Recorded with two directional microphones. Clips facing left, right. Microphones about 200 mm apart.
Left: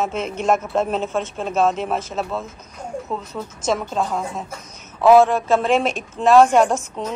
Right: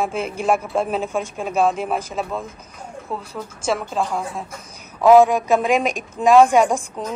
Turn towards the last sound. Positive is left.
turn(degrees=-10)  # may be behind; listen again after turning